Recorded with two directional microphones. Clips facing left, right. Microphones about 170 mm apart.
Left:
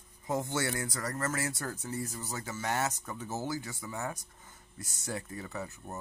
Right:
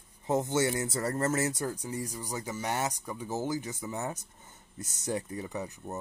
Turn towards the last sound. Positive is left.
turn(degrees=-20)  # may be behind; listen again after turning